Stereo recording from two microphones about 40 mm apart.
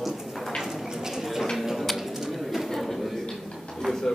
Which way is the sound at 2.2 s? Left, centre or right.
Centre.